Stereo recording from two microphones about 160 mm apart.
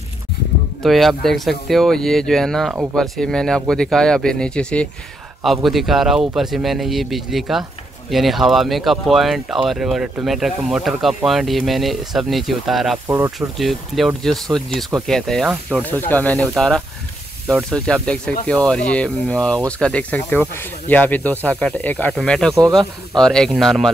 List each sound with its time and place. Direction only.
0.8 s speech: centre (ahead or behind)
13.1 s speech: 15° right (ahead or behind)
13.6 s speech: centre (ahead or behind)